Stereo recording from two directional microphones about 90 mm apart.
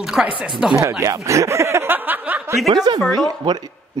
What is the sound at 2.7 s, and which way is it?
Speech, 55° right (ahead or behind).